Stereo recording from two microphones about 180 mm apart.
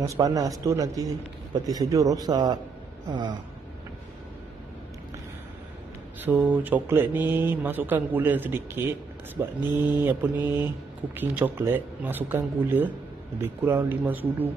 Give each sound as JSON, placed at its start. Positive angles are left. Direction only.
{"t": 0.0, "sound": "a man's voice", "side_deg": -20}
{"t": 6.2, "sound": "speech", "side_deg": -10}